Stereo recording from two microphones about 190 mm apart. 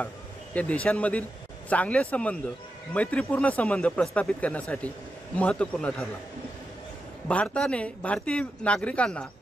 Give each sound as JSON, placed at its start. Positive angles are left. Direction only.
{"t": 0.6, "sound": "speech", "side_deg": 5}
{"t": 7.2, "sound": "a man's voice", "side_deg": 5}